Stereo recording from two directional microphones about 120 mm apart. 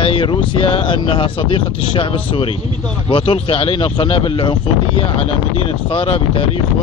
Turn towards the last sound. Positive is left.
turn(degrees=50)  # may be behind; listen again after turning